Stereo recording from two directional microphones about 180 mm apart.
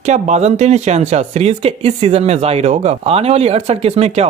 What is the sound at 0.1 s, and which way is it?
Speech, 40° right (ahead or behind).